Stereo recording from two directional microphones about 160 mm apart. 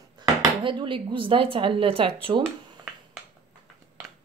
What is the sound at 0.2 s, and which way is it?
Speech, 25° right (ahead or behind).